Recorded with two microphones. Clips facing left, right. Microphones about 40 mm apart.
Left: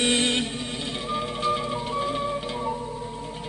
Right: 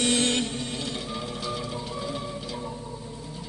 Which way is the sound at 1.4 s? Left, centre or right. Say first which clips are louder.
Left 6 dB; left.